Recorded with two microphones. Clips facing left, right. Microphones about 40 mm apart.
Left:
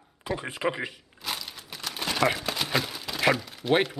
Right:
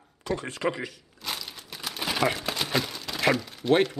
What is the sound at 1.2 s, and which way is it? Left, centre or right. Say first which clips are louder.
Crumpling: even; centre.